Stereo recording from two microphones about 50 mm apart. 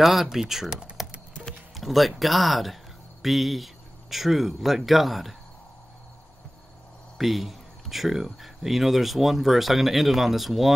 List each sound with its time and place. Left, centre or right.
0.0 s speech: centre
7.2 s speech: centre